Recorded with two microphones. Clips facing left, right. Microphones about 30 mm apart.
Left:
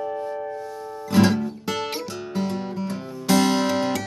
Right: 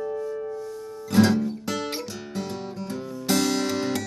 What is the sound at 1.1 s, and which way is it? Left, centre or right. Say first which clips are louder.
Music: left 1 dB; centre.